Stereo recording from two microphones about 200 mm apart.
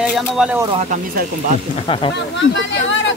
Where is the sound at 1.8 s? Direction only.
25° left (ahead or behind).